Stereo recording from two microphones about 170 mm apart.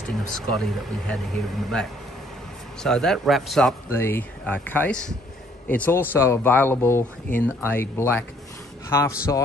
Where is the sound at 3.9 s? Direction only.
15° left (ahead or behind).